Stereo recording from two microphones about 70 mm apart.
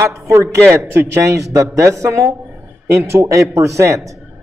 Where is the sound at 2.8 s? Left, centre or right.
Right.